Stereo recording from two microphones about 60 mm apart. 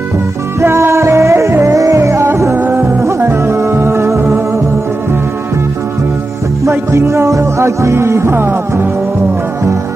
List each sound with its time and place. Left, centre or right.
0.6 s music: right
2.5 s music: right
2.8 s music: right
6.7 s music: right